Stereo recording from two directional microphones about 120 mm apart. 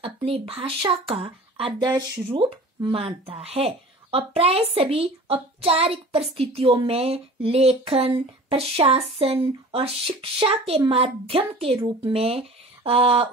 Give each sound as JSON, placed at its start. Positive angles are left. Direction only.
{"t": 0.0, "sound": "speech", "side_deg": -50}
{"t": 1.8, "sound": "speech", "side_deg": -35}
{"t": 2.3, "sound": "speech", "side_deg": -45}